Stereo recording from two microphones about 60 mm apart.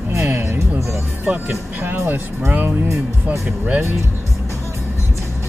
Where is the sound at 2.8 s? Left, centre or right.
Right.